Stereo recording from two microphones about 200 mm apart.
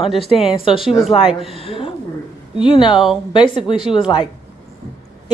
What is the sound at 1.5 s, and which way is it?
Speech, 30° left (ahead or behind).